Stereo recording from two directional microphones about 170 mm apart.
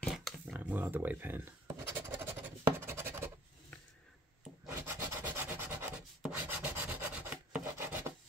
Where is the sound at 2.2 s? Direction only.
15° right (ahead or behind).